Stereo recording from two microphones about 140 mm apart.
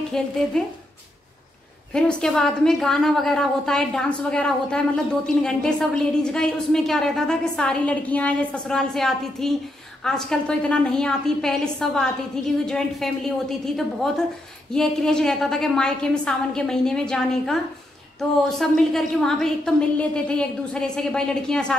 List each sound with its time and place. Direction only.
0.1 s a woman's voice: 5° left (ahead or behind)
2.0 s a woman's voice: 5° left (ahead or behind)
18.6 s a woman's voice: 5° left (ahead or behind)